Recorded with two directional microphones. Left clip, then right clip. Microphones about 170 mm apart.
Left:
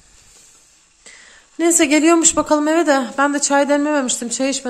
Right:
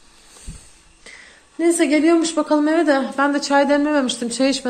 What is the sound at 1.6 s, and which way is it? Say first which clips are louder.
A woman's voice: left 2 dB; 40° left (ahead or behind).